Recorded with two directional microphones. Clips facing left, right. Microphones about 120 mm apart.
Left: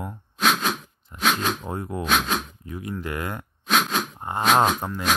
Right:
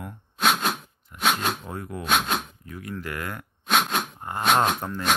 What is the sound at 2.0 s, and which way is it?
Speech, centre (ahead or behind).